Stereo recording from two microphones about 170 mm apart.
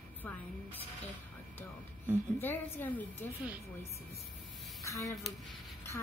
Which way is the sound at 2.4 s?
10° left (ahead or behind).